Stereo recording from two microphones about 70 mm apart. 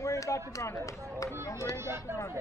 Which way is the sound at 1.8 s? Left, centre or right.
Right.